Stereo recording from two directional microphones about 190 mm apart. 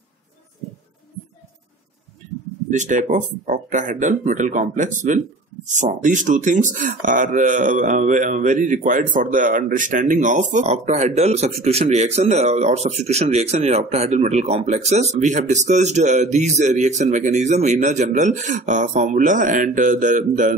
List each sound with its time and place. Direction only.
2.7 s speech: 40° right (ahead or behind)